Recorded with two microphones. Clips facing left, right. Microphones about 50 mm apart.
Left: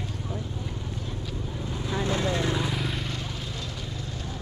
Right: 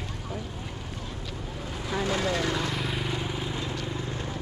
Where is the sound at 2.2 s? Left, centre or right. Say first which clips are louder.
Even; left.